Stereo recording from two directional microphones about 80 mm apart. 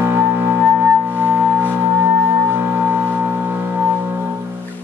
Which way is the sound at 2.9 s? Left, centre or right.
Right.